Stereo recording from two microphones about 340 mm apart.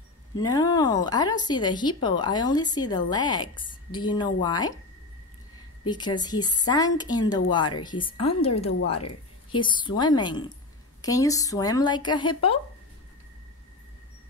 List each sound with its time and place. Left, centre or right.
0.4 s a woman's voice: centre
5.9 s a woman's voice: centre
8.6 s a woman's voice: left
9.5 s a woman's voice: centre